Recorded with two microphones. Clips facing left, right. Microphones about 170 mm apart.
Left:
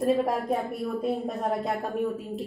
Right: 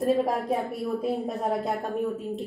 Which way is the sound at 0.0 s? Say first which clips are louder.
Even; centre (ahead or behind).